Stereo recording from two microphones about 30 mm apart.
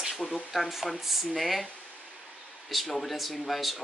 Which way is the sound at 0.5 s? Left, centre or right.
Centre.